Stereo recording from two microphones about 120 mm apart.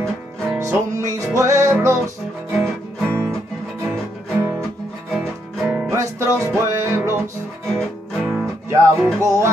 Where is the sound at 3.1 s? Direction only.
20° right (ahead or behind).